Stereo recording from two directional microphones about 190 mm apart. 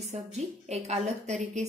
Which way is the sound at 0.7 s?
35° right (ahead or behind).